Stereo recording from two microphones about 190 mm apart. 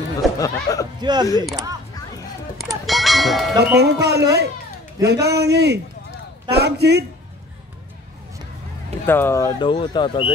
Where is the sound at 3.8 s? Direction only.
60° right (ahead or behind).